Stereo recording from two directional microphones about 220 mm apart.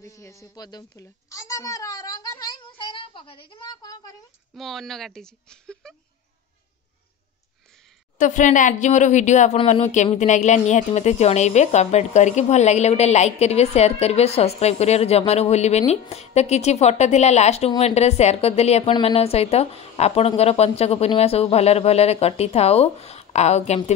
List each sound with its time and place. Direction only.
0.0 s a woman's voice: 15° left (ahead or behind)
4.6 s speech: centre (ahead or behind)
8.2 s speech: 35° left (ahead or behind)